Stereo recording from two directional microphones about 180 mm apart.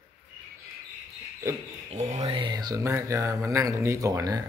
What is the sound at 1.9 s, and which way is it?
Speech, 40° right (ahead or behind).